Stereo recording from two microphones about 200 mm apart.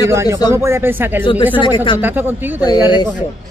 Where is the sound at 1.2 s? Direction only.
25° left (ahead or behind).